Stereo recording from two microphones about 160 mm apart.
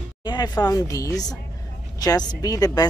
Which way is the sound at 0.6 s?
20° left (ahead or behind).